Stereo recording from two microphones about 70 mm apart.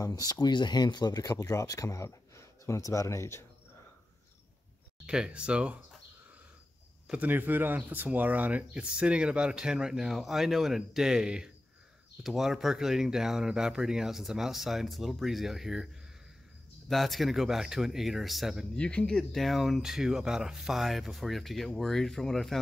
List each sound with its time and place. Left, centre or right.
0.0 s speech: left
1.3 s speech: left
5.0 s speech: centre
7.1 s speech: right; by 15.9 s centre
16.9 s speech: centre
18.8 s speech: centre